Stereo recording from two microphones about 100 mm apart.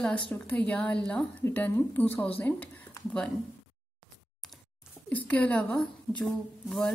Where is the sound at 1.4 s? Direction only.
20° left (ahead or behind).